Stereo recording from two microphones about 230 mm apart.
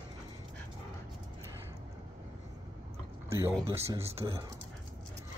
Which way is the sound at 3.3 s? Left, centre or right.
Centre.